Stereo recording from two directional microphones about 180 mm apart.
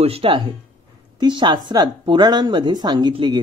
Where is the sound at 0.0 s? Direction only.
30° right (ahead or behind).